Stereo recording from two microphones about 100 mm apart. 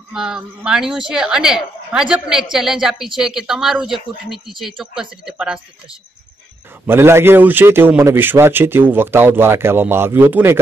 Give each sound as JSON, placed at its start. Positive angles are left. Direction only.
{"t": 0.1, "sound": "speech", "side_deg": -5}
{"t": 6.9, "sound": "speech", "side_deg": -25}